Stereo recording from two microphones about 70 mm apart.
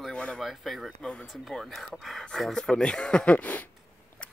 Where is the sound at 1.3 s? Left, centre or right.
Centre; by 3.7 s left.